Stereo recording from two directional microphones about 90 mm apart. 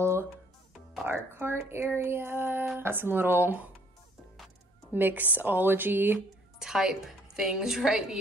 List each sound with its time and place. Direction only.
0.0 s music: 30° right (ahead or behind)
1.0 s speech: 25° right (ahead or behind)
4.9 s speech: 20° right (ahead or behind)
6.6 s a woman's voice: 5° right (ahead or behind)